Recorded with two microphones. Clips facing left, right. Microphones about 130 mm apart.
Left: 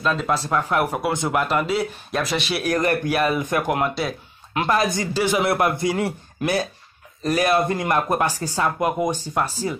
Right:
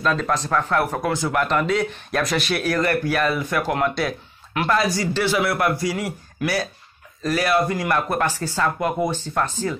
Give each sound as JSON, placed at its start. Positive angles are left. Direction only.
{"t": 0.0, "sound": "speech", "side_deg": 5}
{"t": 1.5, "sound": "speech", "side_deg": 5}
{"t": 2.6, "sound": "speech", "side_deg": 15}